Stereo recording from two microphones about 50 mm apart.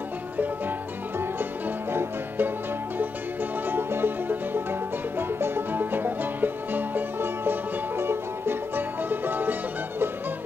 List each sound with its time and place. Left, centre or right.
0.4 s music: right
3.6 s music: right